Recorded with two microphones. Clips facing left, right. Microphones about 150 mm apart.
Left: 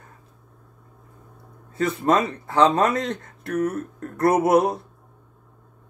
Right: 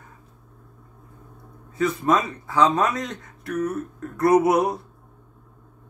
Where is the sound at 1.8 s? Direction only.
55° left (ahead or behind).